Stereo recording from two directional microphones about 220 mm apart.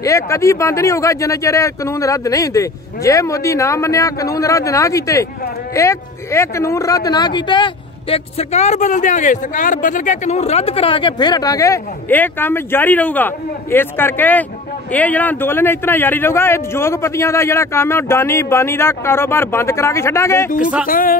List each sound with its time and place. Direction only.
0.0 s speech: 15° left (ahead or behind)
20.8 s speech: 40° left (ahead or behind)